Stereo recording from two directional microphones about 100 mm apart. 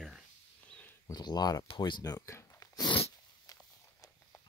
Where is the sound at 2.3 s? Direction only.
30° left (ahead or behind).